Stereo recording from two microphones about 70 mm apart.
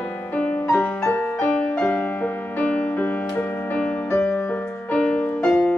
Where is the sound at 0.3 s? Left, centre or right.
Left.